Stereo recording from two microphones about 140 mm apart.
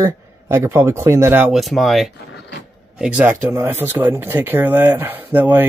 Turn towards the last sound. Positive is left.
turn(degrees=-15)  # may be behind; listen again after turning